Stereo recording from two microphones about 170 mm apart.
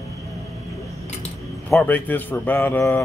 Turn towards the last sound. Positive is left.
turn(degrees=15)  # may be behind; listen again after turning